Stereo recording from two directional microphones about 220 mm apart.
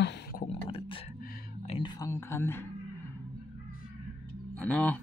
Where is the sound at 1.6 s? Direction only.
30° left (ahead or behind).